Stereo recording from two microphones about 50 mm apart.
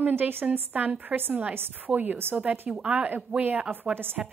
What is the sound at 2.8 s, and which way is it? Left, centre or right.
Speech, right.